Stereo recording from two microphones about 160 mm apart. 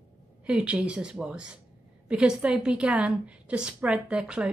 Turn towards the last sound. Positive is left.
turn(degrees=-5)  # may be behind; listen again after turning